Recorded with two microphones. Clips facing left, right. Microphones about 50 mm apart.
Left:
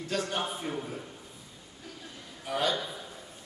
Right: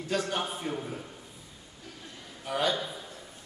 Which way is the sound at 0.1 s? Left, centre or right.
Centre.